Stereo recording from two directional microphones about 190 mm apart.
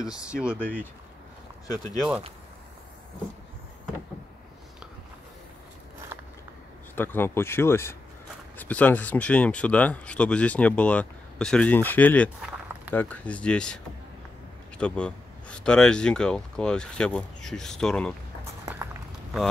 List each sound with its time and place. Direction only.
0.3 s speech: 5° right (ahead or behind)
0.6 s speech: 10° left (ahead or behind)
2.0 s speech: 5° right (ahead or behind)
7.0 s speech: 10° left (ahead or behind)
14.8 s speech: 5° left (ahead or behind)